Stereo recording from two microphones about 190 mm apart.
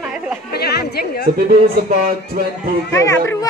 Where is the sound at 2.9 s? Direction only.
15° left (ahead or behind).